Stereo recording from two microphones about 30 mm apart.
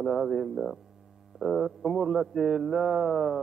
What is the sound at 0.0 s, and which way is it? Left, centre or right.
A man's voice, centre.